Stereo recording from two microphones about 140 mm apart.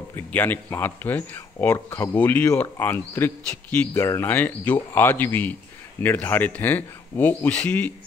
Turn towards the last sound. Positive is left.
turn(degrees=10)  # may be behind; listen again after turning